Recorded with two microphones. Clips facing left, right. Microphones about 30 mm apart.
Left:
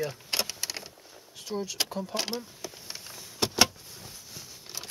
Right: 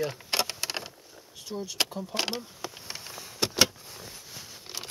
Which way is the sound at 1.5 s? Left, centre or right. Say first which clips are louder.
Left 3 dB; left.